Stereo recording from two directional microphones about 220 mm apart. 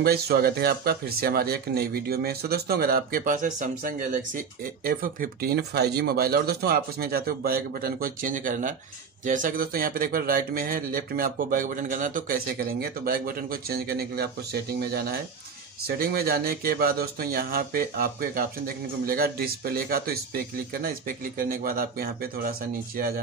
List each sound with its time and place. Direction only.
0.0 s speech: 45° right (ahead or behind)